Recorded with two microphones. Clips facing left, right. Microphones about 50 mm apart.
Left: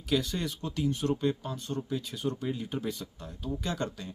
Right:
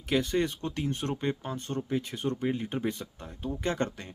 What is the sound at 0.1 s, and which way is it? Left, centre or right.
Speech, right.